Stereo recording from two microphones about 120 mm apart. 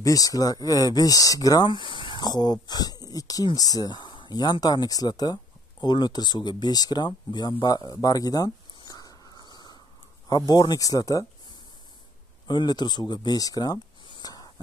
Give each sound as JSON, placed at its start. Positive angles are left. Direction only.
{"t": 0.0, "sound": "speech", "side_deg": 30}
{"t": 12.4, "sound": "speech", "side_deg": 35}